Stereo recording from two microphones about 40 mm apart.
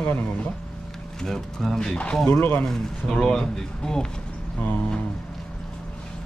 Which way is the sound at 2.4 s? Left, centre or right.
Left.